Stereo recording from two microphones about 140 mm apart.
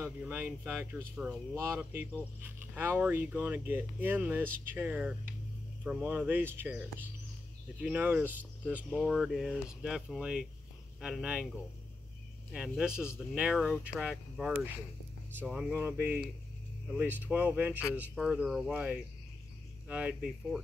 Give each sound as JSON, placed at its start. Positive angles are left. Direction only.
{"t": 0.0, "sound": "speech", "side_deg": -15}
{"t": 7.8, "sound": "speech", "side_deg": -10}
{"t": 12.5, "sound": "speech", "side_deg": -5}